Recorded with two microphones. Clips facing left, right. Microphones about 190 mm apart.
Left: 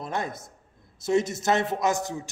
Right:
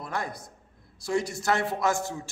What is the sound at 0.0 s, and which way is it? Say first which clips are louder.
A man's voice: left 2 dB; 25° left (ahead or behind).